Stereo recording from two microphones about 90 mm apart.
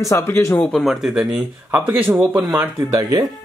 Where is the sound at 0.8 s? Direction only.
5° right (ahead or behind).